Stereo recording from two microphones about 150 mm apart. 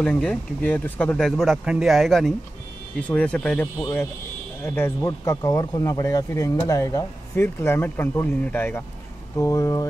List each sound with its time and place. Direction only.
0.0 s speech: 5° left (ahead or behind)
4.6 s speech: 15° left (ahead or behind)